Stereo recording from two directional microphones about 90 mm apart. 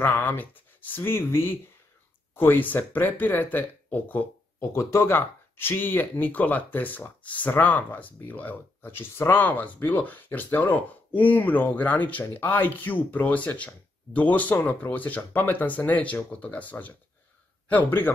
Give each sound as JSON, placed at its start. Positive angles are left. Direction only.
{"t": 0.0, "sound": "speech", "side_deg": 20}
{"t": 4.6, "sound": "speech", "side_deg": 30}